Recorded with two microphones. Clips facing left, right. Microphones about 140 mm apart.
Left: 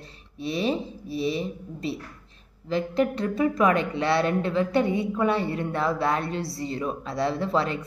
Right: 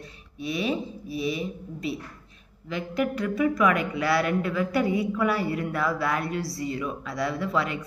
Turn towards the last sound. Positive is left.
turn(degrees=30)  # may be behind; listen again after turning